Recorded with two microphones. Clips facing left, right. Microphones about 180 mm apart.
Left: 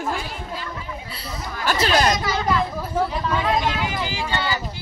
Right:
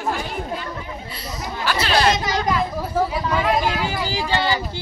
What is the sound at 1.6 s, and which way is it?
Chatter, 45° left (ahead or behind).